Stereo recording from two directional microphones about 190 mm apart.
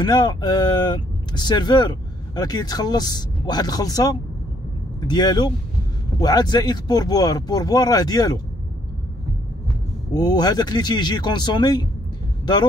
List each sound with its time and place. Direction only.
0.0 s speech: 20° left (ahead or behind)
10.1 s speech: 20° left (ahead or behind)